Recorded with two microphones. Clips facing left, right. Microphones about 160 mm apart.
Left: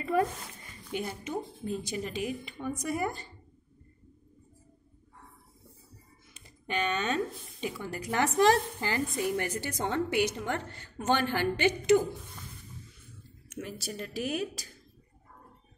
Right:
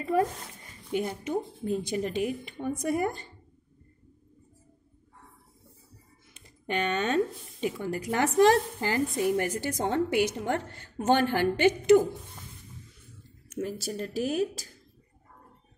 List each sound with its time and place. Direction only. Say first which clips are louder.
0.0 s speech: right 2 dB; 35° right (ahead or behind)
1.6 s a woman's voice: right 5 dB; 45° right (ahead or behind)
6.6 s a woman's voice: right 3 dB; 50° right (ahead or behind)
13.6 s speech: right 6 dB; 40° right (ahead or behind)